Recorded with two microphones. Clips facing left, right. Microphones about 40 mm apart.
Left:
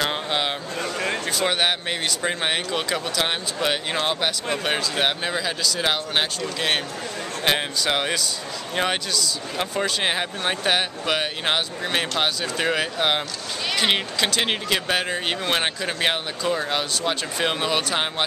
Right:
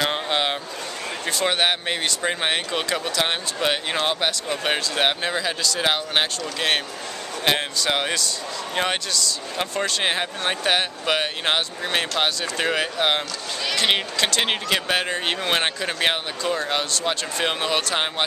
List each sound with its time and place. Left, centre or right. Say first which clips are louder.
0.0 s vehicle: right 1 dB; centre
1.4 s speech: right 2 dB; centre